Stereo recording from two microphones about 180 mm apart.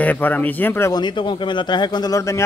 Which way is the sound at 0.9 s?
25° left (ahead or behind).